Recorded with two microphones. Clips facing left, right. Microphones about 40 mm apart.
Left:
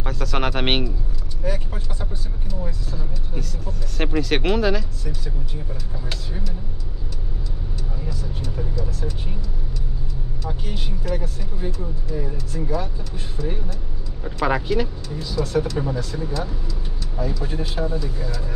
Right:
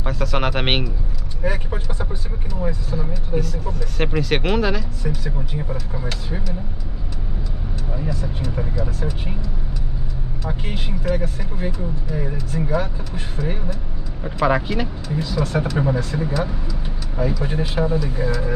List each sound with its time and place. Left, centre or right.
0.0 s speech: centre
1.4 s speech: right
3.3 s speech: centre
5.0 s speech: right
9.0 s speech: right
10.5 s speech: right
14.2 s speech: centre
15.1 s speech: right
17.4 s speech: right